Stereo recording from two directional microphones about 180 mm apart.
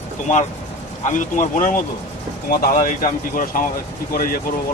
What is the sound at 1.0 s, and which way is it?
Speech, 45° left (ahead or behind).